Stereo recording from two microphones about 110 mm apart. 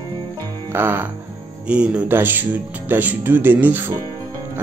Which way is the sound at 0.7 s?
20° right (ahead or behind).